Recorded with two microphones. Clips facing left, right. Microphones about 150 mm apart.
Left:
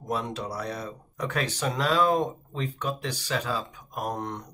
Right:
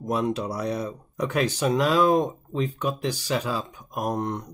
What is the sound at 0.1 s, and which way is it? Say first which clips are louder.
Speech: right 5 dB; 15° right (ahead or behind).